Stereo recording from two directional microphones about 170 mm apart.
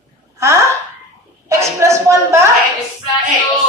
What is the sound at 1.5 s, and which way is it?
Speech, 15° right (ahead or behind).